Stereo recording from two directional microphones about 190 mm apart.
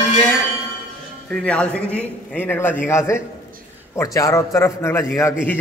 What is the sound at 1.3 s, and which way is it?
A man's voice, 5° left (ahead or behind).